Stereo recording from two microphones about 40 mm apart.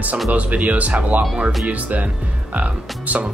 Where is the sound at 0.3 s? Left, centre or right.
Right.